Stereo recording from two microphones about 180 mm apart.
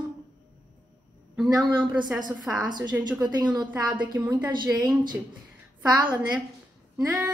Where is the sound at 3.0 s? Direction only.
25° right (ahead or behind).